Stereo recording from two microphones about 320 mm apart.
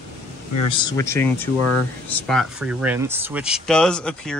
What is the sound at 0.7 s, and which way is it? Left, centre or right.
Speech, centre.